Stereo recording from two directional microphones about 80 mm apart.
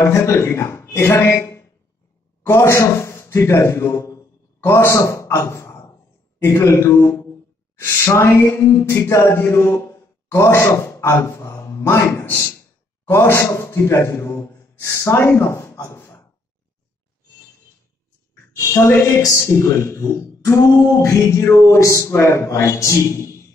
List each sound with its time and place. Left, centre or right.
0.0 s a woman's voice: left
18.6 s a woman's voice: left